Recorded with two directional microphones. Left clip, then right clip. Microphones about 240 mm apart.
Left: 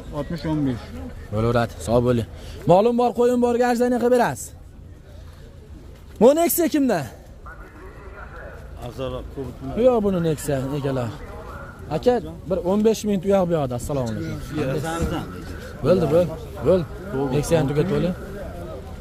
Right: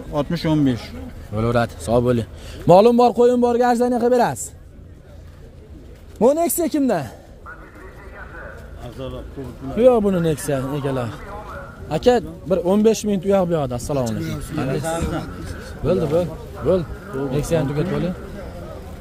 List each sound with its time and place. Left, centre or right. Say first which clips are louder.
0.1 s speech: right 6 dB; right
1.3 s a man's voice: right 1 dB; centre
2.6 s a man's voice: right 5 dB; centre
3.3 s a man's voice: right 3 dB; centre
6.1 s speech: left 1 dB; centre
8.8 s speech: left 3 dB; centre
9.8 s a man's voice: right 4 dB; centre
14.0 s speech: right 3 dB; right
15.8 s a man's voice: left 1 dB; centre